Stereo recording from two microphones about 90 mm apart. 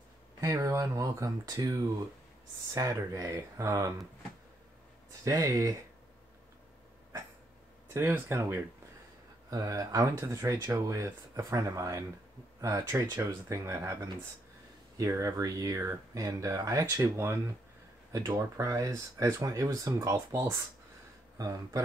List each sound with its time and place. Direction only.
0.4 s speech: 35° right (ahead or behind)
5.2 s speech: 35° right (ahead or behind)
7.9 s speech: 30° right (ahead or behind)
9.5 s speech: 40° right (ahead or behind)
15.0 s speech: 35° right (ahead or behind)
18.1 s speech: 40° right (ahead or behind)
21.4 s speech: 40° right (ahead or behind)